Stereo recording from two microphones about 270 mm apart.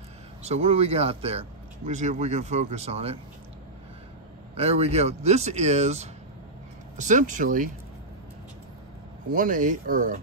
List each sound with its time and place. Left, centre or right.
0.4 s speech: right
4.6 s speech: right
9.3 s speech: right